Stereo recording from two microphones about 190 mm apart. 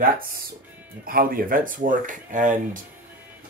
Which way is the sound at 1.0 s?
50° right (ahead or behind).